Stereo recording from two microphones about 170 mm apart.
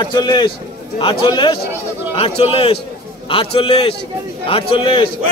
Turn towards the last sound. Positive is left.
turn(degrees=30)  # may be behind; listen again after turning